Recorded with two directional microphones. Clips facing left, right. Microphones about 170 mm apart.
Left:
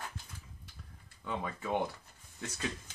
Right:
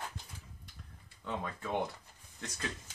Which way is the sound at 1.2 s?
10° left (ahead or behind).